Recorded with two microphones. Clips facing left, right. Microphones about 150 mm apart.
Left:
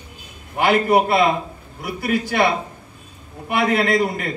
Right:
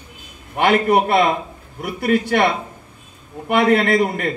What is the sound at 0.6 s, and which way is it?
A man's voice, 65° right (ahead or behind).